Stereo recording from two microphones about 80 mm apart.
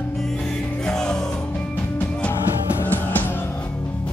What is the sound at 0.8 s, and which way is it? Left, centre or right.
Music, centre.